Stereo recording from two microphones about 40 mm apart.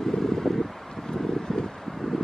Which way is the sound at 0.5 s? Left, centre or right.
Centre.